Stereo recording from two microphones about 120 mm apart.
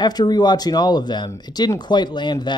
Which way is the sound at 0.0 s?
35° left (ahead or behind).